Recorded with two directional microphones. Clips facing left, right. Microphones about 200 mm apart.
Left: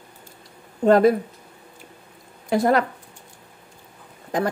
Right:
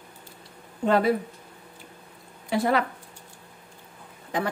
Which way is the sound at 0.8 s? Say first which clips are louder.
Left 7 dB; 45° left (ahead or behind).